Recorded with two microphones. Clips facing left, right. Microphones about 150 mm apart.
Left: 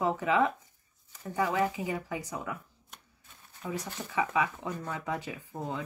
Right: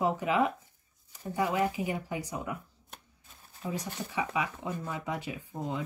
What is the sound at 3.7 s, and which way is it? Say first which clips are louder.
Speech: left 3 dB; 15° right (ahead or behind).